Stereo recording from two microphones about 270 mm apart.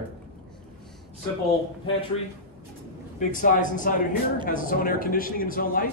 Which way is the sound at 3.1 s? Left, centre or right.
Left.